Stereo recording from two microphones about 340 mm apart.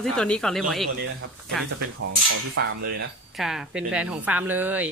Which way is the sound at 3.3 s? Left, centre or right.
Centre.